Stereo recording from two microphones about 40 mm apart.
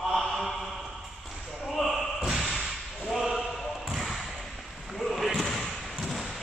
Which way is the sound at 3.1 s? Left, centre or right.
Centre.